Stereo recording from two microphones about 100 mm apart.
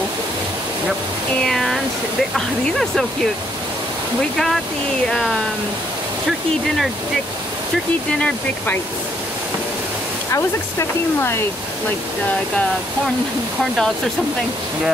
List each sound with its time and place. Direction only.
1.4 s speech: centre (ahead or behind)
5.1 s speech: 5° left (ahead or behind)
8.1 s speech: 15° left (ahead or behind)
11.1 s speech: 25° left (ahead or behind)
13.7 s speech: 5° left (ahead or behind)